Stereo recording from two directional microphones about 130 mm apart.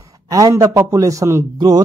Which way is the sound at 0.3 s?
25° right (ahead or behind).